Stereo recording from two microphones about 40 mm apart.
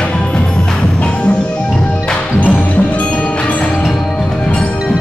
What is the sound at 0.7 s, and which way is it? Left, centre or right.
Tubular bells, left.